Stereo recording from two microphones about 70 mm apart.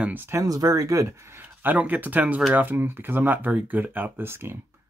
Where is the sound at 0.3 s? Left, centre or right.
Right.